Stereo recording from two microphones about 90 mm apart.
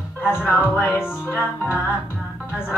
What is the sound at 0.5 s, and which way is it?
Music, 25° left (ahead or behind).